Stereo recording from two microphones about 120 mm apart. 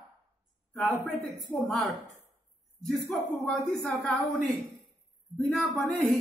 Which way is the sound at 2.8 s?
5° left (ahead or behind).